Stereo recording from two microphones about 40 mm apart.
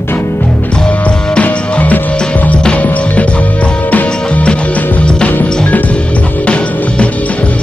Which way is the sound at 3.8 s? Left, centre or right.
Left.